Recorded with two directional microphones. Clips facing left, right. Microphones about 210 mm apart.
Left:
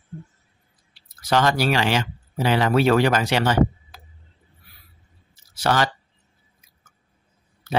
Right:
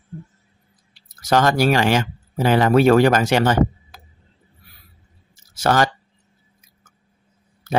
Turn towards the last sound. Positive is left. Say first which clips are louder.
# right 3 dB
turn(degrees=-45)  # may be behind; listen again after turning